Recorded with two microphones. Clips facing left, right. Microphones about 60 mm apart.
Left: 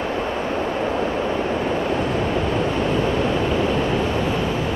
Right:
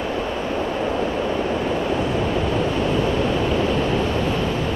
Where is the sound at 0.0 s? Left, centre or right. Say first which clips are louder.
Left 1 dB; left.